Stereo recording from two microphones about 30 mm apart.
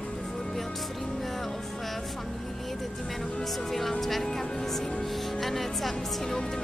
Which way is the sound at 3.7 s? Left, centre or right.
Centre.